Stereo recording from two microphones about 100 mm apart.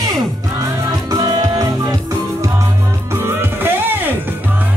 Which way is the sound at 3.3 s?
20° right (ahead or behind).